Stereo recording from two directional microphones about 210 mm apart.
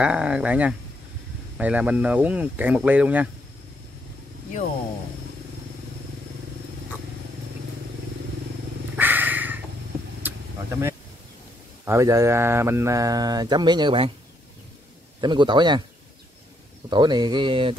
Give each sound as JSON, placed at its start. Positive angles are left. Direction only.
{"t": 0.0, "sound": "speech", "side_deg": -5}
{"t": 8.9, "sound": "purr", "side_deg": -10}
{"t": 10.2, "sound": "vehicle", "side_deg": -10}
{"t": 11.8, "sound": "speech", "side_deg": -15}
{"t": 15.1, "sound": "speech", "side_deg": -20}
{"t": 16.9, "sound": "speech", "side_deg": -20}